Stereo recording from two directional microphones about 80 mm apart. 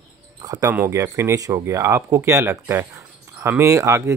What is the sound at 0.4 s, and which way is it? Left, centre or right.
Cricket, right.